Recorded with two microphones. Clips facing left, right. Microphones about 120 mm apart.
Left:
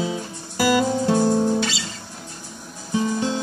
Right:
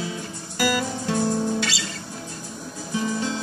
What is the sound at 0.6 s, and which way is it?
Guitar, 25° left (ahead or behind).